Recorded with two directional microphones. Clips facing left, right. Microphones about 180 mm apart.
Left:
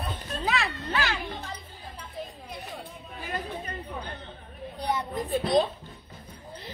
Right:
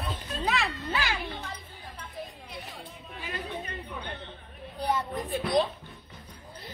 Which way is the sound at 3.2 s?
45° left (ahead or behind).